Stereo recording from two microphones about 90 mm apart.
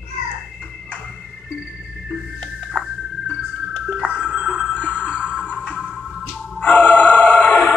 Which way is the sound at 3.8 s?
10° right (ahead or behind).